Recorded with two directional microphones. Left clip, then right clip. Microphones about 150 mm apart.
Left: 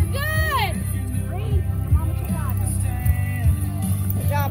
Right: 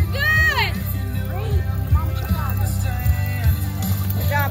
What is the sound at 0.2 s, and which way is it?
Music, 90° left.